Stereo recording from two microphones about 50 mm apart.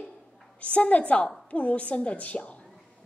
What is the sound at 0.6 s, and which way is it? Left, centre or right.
A woman's voice, left.